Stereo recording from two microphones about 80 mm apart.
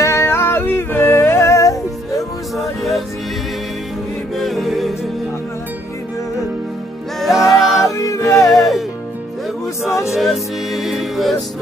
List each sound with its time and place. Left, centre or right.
0.0 s music: left
2.5 s music: centre
4.4 s music: centre
7.2 s music: centre
7.9 s music: left
8.5 s music: centre
10.1 s music: centre